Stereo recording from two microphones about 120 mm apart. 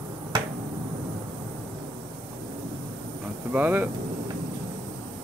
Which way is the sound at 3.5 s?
15° right (ahead or behind).